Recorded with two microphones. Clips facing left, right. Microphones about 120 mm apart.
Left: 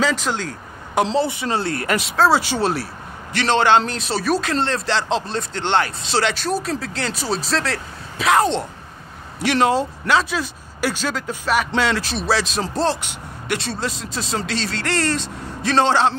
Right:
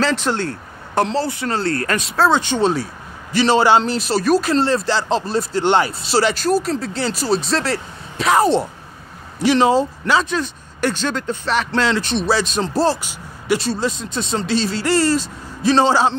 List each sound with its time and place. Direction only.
0.0 s speech: 5° left (ahead or behind)
1.0 s speech: 25° left (ahead or behind)
2.0 s speech: centre (ahead or behind)
3.3 s speech: 5° right (ahead or behind)